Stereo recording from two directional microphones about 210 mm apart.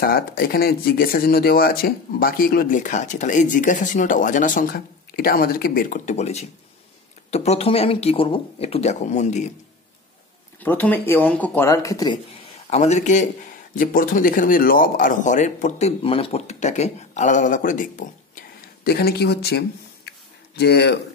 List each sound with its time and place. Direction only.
0.0 s speech: 45° left (ahead or behind)
10.6 s speech: 10° left (ahead or behind)
12.6 s speech: 35° left (ahead or behind)
18.9 s speech: 50° left (ahead or behind)
20.1 s a sound: 50° left (ahead or behind)